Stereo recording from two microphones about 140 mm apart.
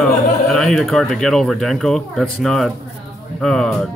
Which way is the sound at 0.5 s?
Centre (ahead or behind).